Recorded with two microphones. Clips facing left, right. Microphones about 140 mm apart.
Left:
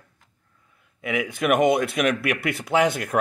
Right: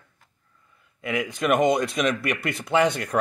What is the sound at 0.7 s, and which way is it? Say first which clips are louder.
A man's voice: left 1 dB; 5° left (ahead or behind).